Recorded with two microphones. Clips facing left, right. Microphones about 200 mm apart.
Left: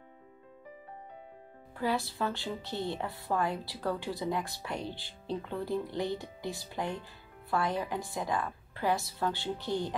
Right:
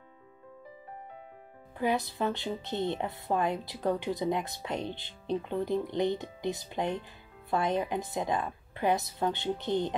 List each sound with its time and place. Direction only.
1.8 s speech: 20° right (ahead or behind)